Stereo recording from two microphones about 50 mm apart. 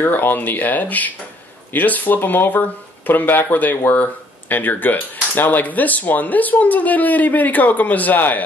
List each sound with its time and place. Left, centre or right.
0.0 s speech: left